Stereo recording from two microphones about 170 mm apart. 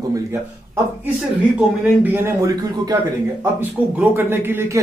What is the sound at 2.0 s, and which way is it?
A man's voice, 15° right (ahead or behind).